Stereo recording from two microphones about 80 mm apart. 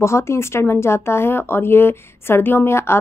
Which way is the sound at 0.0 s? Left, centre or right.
Left.